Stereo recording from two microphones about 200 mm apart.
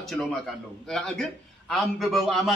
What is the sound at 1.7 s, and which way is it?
Speech, centre (ahead or behind).